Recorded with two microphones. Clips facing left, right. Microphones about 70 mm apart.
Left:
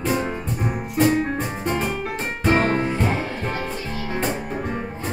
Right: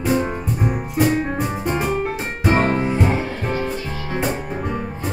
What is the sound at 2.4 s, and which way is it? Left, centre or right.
Music, centre.